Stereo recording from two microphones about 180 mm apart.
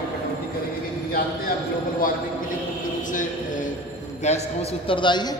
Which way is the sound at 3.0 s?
45° left (ahead or behind).